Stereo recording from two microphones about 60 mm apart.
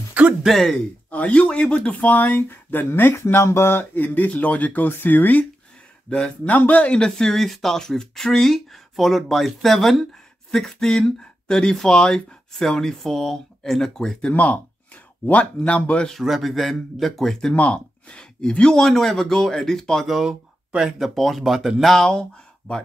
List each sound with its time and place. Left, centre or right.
0.5 s speech: centre
1.1 s speech: left
3.9 s speech: left
6.0 s speech: centre
14.3 s speech: left
16.1 s speech: centre
17.6 s speech: centre
20.1 s speech: centre